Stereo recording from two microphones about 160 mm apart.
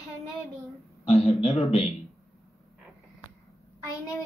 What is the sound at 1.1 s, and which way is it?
Speech, 40° left (ahead or behind).